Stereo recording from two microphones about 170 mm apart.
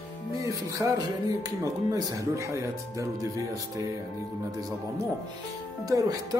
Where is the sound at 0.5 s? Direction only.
20° right (ahead or behind).